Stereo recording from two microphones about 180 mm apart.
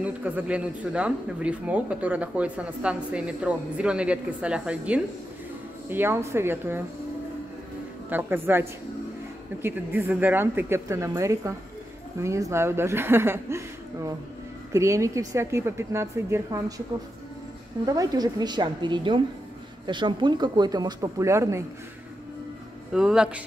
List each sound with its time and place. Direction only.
0.0 s speech: 10° right (ahead or behind)
8.1 s speech: 10° right (ahead or behind)
17.8 s speech: 20° right (ahead or behind)
22.9 s speech: 5° right (ahead or behind)